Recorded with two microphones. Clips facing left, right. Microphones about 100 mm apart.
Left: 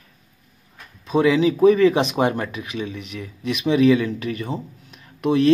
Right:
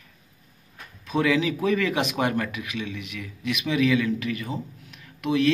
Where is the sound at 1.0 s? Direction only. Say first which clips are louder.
Left 6 dB; 25° left (ahead or behind).